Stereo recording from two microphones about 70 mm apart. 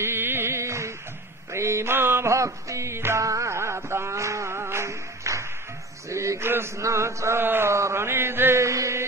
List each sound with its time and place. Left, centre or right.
0.0 s music: right
6.0 s a sound: right
6.8 s mantra: right